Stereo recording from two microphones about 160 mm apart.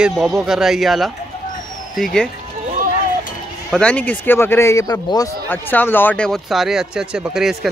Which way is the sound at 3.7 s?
10° left (ahead or behind).